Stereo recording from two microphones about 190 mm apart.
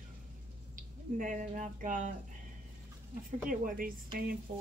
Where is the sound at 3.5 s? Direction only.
45° right (ahead or behind).